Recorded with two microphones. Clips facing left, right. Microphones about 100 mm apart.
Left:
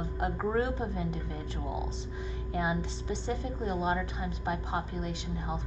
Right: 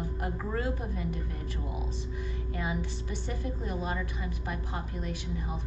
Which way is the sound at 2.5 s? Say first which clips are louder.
Left 3 dB; 20° left (ahead or behind).